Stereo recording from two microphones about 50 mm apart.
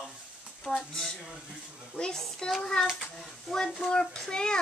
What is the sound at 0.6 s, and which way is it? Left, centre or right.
A child's voice, centre.